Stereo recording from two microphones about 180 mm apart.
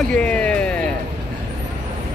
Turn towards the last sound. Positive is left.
turn(degrees=5)  # may be behind; listen again after turning